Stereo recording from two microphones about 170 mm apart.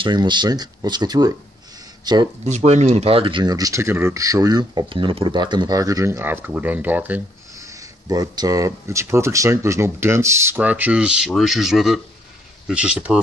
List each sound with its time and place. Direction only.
0.0 s speech: 25° right (ahead or behind)
2.4 s speech: 40° right (ahead or behind); by 13.2 s 5° right (ahead or behind)